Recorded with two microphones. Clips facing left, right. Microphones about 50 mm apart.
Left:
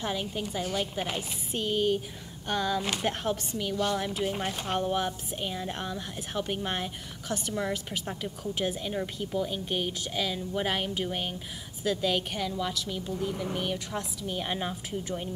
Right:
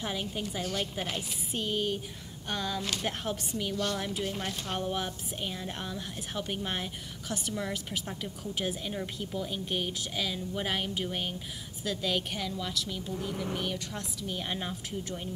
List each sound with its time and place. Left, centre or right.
0.0 s a woman's voice: centre
4.2 s speech: centre
4.7 s a woman's voice: centre